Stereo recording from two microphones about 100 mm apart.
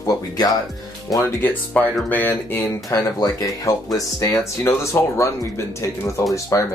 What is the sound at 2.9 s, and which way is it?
Speech, 40° left (ahead or behind).